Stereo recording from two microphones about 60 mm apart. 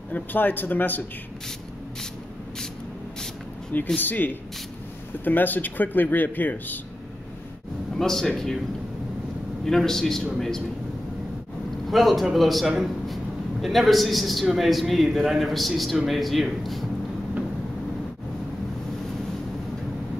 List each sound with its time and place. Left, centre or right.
0.1 s speech: left
4.0 s speech: left
7.9 s speech: centre
9.7 s a man's voice: centre
11.9 s a man's voice: centre